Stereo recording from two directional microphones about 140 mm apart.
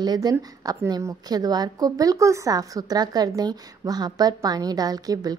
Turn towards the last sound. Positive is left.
turn(degrees=-25)  # may be behind; listen again after turning